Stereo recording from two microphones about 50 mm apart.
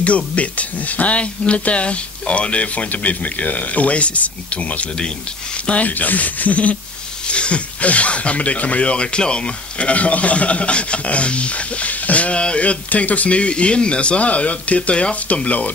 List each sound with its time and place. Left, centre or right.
0.0 s speech: left
5.8 s speech: left